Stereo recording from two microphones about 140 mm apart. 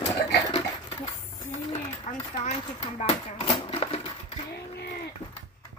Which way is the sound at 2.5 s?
45° left (ahead or behind).